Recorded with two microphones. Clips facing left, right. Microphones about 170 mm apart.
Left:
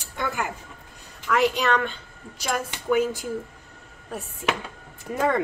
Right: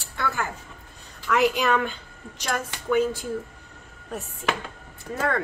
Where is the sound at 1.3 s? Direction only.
Centre (ahead or behind).